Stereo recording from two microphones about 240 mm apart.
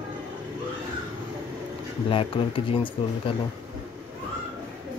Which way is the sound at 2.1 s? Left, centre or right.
Left.